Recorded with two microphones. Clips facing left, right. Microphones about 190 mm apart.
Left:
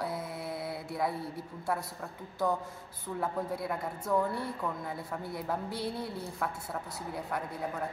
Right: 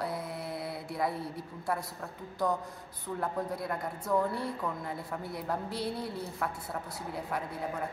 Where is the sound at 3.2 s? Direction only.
Centre (ahead or behind).